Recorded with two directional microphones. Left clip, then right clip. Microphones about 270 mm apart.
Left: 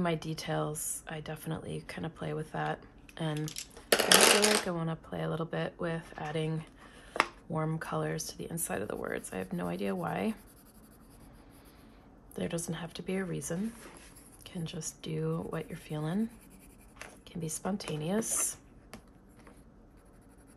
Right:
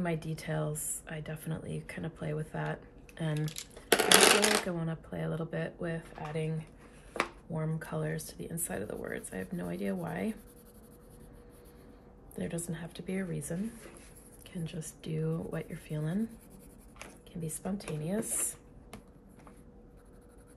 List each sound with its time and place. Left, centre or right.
0.0 s a woman's voice: centre
4.6 s a woman's voice: centre
12.4 s a woman's voice: centre